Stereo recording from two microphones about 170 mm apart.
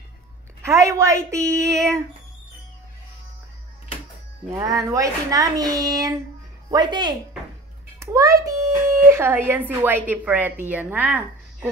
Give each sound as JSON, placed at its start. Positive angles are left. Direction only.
{"t": 0.6, "sound": "a woman's voice", "side_deg": -15}
{"t": 4.5, "sound": "speech", "side_deg": -20}
{"t": 8.0, "sound": "a sound", "side_deg": -20}
{"t": 9.5, "sound": "a woman's voice", "side_deg": -10}